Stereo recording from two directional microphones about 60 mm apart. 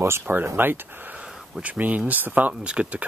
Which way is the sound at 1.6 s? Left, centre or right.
Right.